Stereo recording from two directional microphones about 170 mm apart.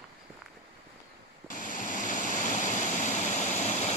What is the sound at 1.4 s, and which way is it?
Waterfall, 50° left (ahead or behind).